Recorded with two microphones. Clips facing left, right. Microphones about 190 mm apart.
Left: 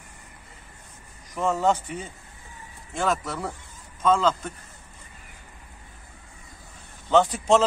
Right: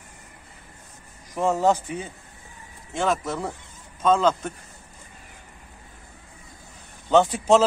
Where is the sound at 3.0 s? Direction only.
Centre (ahead or behind).